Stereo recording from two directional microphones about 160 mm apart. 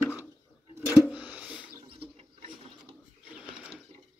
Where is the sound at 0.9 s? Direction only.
5° right (ahead or behind).